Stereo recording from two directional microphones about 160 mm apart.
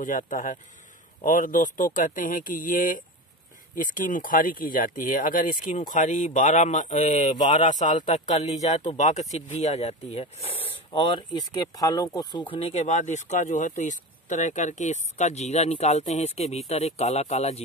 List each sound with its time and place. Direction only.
0.0 s speech: 55° left (ahead or behind); by 12.5 s 25° left (ahead or behind)
12.5 s speech: 40° left (ahead or behind)